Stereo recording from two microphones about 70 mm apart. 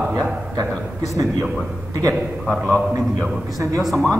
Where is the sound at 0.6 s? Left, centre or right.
Right.